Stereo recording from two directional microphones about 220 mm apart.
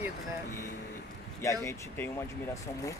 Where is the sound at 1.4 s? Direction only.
15° left (ahead or behind).